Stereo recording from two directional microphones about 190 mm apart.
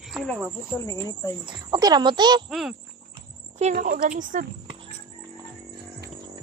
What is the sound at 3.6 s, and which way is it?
Speech, 45° right (ahead or behind).